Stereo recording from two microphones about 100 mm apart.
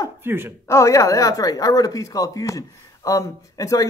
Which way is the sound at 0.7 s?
30° left (ahead or behind).